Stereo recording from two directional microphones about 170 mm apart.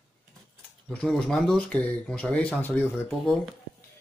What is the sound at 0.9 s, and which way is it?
Speech, 5° left (ahead or behind).